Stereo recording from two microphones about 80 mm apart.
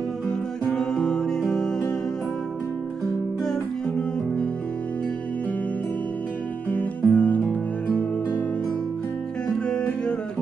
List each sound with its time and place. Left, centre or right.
0.3 s music: centre
6.7 s music: centre
9.5 s music: centre